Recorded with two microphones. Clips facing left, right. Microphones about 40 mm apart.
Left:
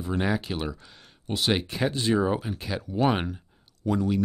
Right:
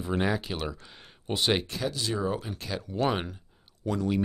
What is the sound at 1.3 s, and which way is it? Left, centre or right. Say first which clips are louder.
Speech: left 1 dB; centre.